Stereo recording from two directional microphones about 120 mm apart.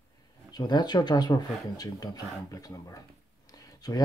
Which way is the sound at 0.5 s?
35° left (ahead or behind).